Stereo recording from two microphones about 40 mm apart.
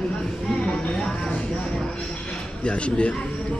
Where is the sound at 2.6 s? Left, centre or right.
Left.